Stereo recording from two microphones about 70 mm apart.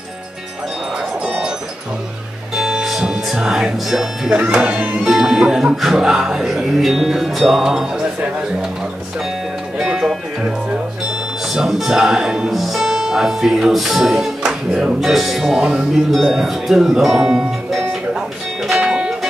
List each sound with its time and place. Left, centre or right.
1.2 s music: centre
2.5 s music: centre
4.4 s speech: centre
9.8 s music: centre
11.5 s speech: centre
18.7 s music: centre